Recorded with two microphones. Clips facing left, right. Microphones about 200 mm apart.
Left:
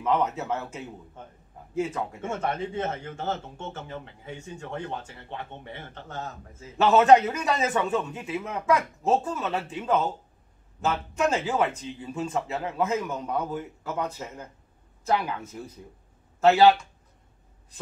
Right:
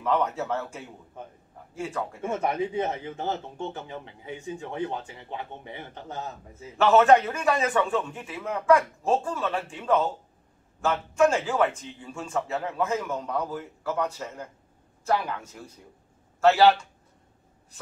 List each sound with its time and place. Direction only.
0.0 s a man's voice: 20° left (ahead or behind)
2.2 s speech: 15° right (ahead or behind)
6.8 s a man's voice: 20° left (ahead or behind)